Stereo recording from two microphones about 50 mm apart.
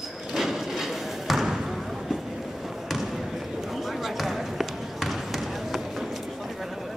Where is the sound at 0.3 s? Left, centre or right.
Centre.